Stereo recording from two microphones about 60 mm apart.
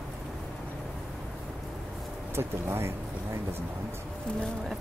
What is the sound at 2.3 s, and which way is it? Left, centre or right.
Speech, right.